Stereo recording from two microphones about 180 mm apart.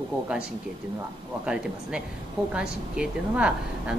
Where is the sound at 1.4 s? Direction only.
5° right (ahead or behind).